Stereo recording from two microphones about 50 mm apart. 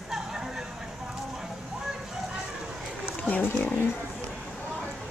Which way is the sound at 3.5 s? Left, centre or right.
Left.